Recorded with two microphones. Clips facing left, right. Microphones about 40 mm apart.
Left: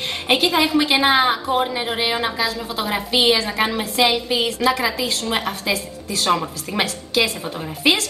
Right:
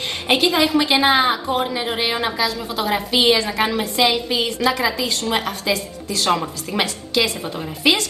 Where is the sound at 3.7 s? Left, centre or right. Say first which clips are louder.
Even; centre.